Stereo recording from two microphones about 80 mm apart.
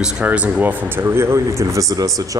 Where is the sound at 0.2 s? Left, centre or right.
Centre.